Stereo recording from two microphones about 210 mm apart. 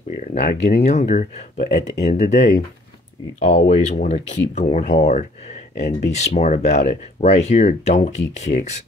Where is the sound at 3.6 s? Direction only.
30° left (ahead or behind).